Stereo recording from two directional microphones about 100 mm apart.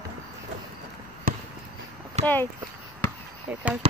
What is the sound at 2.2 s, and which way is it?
Speech, 90° right.